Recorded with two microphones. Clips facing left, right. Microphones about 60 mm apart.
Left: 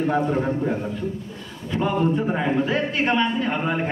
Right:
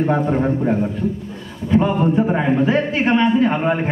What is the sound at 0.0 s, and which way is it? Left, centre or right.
A man's voice, right.